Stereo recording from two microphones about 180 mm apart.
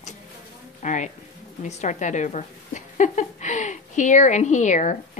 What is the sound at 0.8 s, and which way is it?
A woman's voice, 40° left (ahead or behind).